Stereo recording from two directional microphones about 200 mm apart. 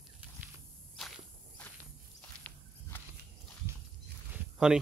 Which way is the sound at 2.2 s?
10° left (ahead or behind).